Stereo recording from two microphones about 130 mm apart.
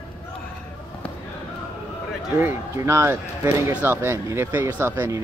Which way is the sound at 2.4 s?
20° right (ahead or behind).